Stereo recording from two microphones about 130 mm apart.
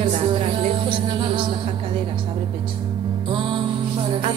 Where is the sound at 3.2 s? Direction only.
40° right (ahead or behind).